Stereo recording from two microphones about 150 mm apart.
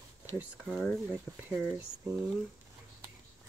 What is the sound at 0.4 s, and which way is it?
Speech, centre (ahead or behind).